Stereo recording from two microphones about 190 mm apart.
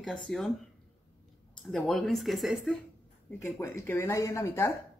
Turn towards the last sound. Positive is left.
turn(degrees=15)  # may be behind; listen again after turning